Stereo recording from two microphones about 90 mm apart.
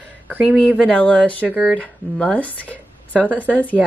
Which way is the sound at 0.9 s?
15° left (ahead or behind).